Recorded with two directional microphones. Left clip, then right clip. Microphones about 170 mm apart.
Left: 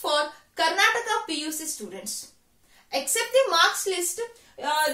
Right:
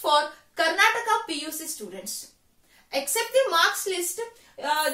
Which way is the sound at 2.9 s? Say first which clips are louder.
Left 1 dB; 15° left (ahead or behind).